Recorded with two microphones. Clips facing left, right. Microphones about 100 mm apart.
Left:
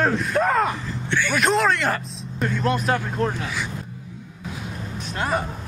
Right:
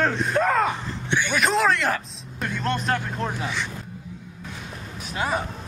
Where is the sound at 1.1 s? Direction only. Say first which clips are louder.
Left 1 dB; 15° right (ahead or behind).